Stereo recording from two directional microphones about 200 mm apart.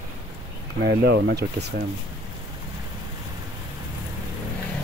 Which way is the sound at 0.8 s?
55° right (ahead or behind).